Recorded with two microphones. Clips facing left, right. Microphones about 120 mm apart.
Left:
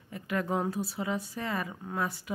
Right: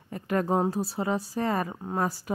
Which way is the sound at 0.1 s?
40° right (ahead or behind).